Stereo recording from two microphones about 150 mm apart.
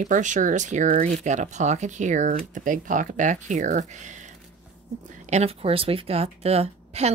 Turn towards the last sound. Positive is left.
turn(degrees=-45)  # may be behind; listen again after turning